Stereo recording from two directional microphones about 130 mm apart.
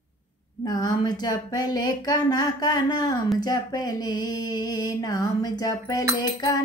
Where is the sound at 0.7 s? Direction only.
30° left (ahead or behind).